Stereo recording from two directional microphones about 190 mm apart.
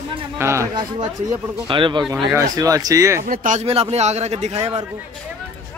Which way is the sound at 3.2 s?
45° right (ahead or behind).